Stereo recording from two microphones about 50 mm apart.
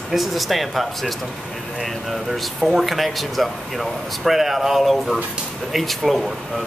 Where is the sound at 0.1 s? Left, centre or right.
Centre.